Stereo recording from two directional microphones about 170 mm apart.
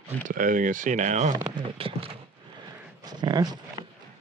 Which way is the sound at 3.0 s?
25° right (ahead or behind).